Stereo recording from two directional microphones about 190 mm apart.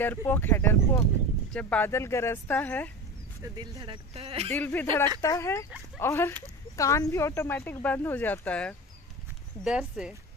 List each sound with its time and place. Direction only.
0.0 s speech: 10° left (ahead or behind)
3.4 s speech: 20° right (ahead or behind)
4.5 s speech: 10° left (ahead or behind)
9.7 s speech: 5° right (ahead or behind)